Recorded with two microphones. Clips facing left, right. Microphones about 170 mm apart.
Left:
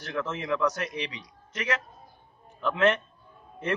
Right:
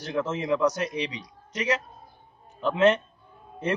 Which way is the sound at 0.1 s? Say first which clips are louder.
Right 4 dB; 20° right (ahead or behind).